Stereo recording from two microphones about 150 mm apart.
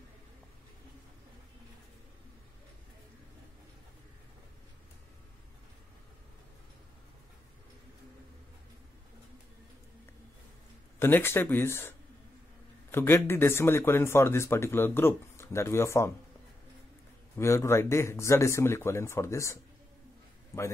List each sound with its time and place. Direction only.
11.0 s a man's voice: 15° left (ahead or behind)
12.9 s a man's voice: 15° left (ahead or behind)
17.4 s a man's voice: 20° left (ahead or behind)